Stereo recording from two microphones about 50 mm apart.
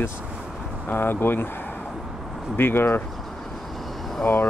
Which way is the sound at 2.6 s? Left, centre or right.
Left.